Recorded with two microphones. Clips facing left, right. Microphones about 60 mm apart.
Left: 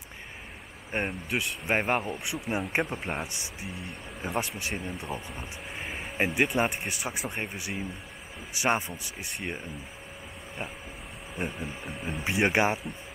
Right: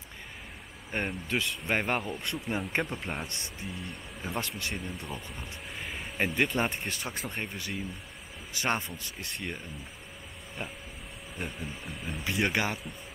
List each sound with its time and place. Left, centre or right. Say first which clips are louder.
0.9 s speech: left 1 dB; centre
1.7 s speech: left 3 dB; centre
4.2 s speech: left 4 dB; left
4.6 s speech: left 2 dB; centre
11.4 s speech: left 4 dB; centre
11.8 s speech: left 3 dB; left